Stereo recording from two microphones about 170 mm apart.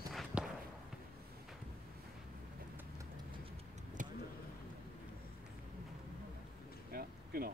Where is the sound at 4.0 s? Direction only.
50° right (ahead or behind).